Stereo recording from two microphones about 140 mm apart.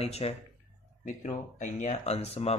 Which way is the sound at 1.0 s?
65° left (ahead or behind).